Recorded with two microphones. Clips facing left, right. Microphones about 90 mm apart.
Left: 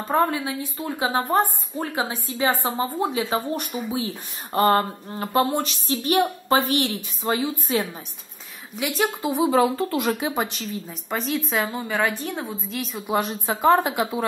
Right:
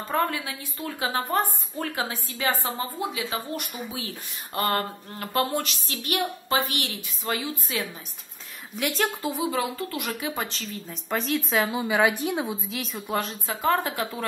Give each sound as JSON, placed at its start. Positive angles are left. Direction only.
{"t": 0.1, "sound": "speech", "side_deg": 25}
{"t": 3.7, "sound": "speech", "side_deg": 25}
{"t": 7.2, "sound": "speech", "side_deg": 25}
{"t": 8.7, "sound": "a woman's voice", "side_deg": 5}
{"t": 9.0, "sound": "a woman's voice", "side_deg": 20}
{"t": 9.5, "sound": "speech", "side_deg": 30}
{"t": 10.3, "sound": "a woman's voice", "side_deg": 20}
{"t": 10.9, "sound": "a woman's voice", "side_deg": 0}
{"t": 12.6, "sound": "a woman's voice", "side_deg": 0}
{"t": 13.0, "sound": "speech", "side_deg": 15}